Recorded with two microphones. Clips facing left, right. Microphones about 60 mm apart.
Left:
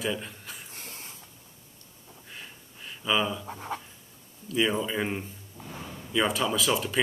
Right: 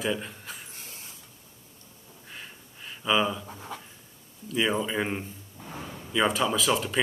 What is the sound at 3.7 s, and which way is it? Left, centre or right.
Dog, left.